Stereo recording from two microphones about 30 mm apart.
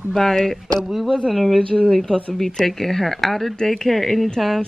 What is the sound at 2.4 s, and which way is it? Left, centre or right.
Speech, centre.